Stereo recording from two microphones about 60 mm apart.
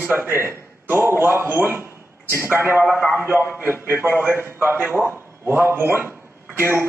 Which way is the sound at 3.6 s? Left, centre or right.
Right.